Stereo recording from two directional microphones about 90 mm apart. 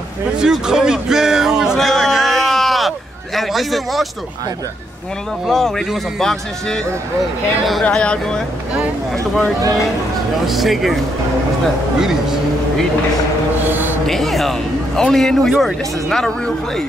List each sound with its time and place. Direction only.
0.4 s a sound: 5° right (ahead or behind)
3.3 s a man's voice: centre (ahead or behind)
5.5 s speech: centre (ahead or behind)
7.8 s speech: 10° left (ahead or behind)
12.0 s speech: 5° right (ahead or behind)
13.7 s a sound: 20° right (ahead or behind)
14.0 s speech: 5° left (ahead or behind)